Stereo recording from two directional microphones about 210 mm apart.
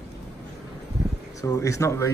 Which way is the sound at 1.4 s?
15° left (ahead or behind).